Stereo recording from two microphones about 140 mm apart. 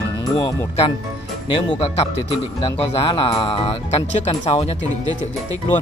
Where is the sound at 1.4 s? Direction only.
35° left (ahead or behind).